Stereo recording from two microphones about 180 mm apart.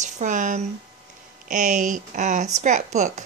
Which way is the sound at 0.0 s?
45° right (ahead or behind).